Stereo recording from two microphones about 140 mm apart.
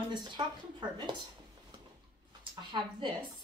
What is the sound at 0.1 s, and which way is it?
Speech, 30° right (ahead or behind).